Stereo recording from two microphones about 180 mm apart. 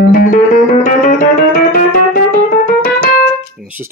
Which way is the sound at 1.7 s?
50° left (ahead or behind).